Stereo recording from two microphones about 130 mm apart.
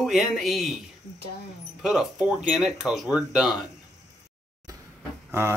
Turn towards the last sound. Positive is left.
turn(degrees=-20)  # may be behind; listen again after turning